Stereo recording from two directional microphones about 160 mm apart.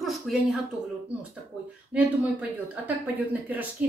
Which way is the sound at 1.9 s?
10° right (ahead or behind).